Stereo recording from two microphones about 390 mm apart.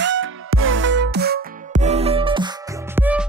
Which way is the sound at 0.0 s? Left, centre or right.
Right.